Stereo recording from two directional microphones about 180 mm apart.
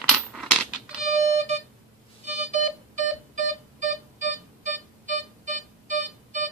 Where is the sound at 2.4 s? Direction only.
45° right (ahead or behind).